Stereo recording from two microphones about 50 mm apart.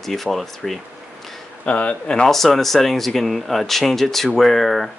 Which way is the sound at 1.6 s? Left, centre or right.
Left.